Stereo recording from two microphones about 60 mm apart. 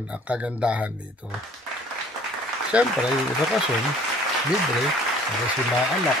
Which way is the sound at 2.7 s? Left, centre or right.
Centre.